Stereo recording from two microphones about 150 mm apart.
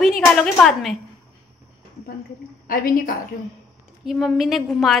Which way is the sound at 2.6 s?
70° left (ahead or behind).